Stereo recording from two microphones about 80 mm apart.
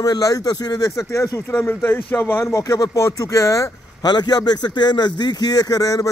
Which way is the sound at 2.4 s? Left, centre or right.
Left.